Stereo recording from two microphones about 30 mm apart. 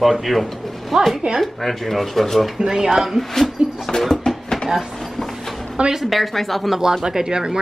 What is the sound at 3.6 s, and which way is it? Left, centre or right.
Speech, right.